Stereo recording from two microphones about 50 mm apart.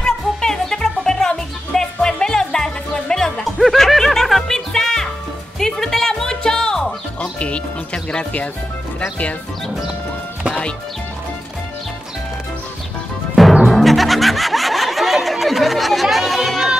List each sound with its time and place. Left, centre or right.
0.0 s music: centre
3.4 s music: centre
7.2 s music: left
13.7 s music: centre